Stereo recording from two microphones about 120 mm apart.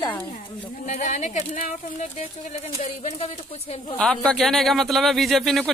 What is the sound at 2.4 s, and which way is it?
Speech, 60° left (ahead or behind).